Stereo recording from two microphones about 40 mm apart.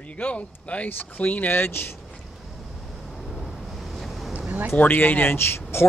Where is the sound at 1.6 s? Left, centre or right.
Left.